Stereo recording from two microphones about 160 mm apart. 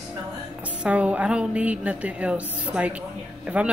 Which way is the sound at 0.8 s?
10° right (ahead or behind).